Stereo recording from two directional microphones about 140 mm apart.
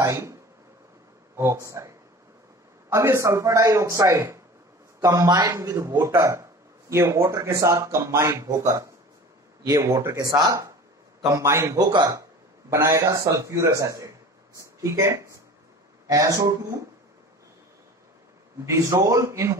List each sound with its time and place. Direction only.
0.0 s speech: 20° right (ahead or behind)
18.7 s speech: 20° right (ahead or behind)